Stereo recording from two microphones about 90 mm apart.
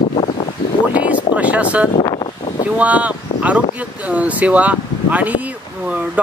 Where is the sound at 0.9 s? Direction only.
15° right (ahead or behind).